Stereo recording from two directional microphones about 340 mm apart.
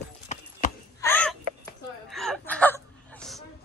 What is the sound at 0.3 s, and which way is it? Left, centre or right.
Clip-clop, left.